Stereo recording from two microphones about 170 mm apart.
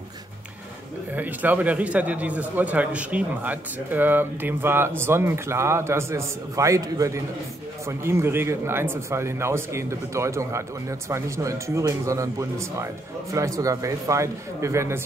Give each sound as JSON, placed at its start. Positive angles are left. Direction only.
{"t": 1.1, "sound": "speech", "side_deg": -10}